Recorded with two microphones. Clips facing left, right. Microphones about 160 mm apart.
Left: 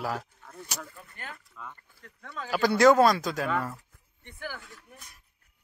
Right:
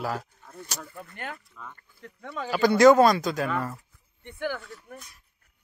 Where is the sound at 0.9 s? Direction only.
60° right (ahead or behind).